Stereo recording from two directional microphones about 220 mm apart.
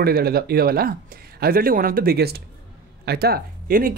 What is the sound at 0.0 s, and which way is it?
Speech, 45° right (ahead or behind).